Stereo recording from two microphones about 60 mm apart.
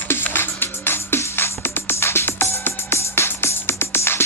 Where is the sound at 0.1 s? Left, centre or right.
Left.